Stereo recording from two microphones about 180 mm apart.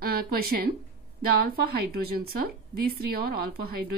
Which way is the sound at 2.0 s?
60° right (ahead or behind).